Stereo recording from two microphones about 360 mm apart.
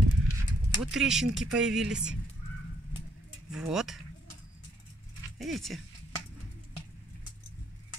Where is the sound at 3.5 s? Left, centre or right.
Centre.